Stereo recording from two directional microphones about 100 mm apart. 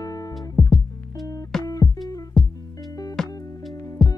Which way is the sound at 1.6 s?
35° left (ahead or behind).